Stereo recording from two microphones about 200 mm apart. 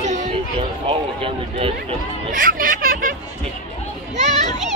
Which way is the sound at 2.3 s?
45° right (ahead or behind).